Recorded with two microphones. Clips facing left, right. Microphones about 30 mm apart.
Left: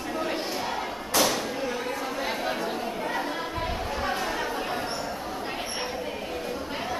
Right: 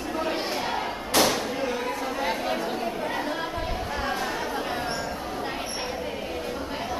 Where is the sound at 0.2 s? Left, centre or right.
Centre.